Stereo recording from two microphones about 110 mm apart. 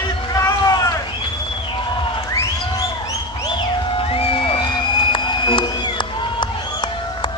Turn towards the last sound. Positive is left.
turn(degrees=50)  # may be behind; listen again after turning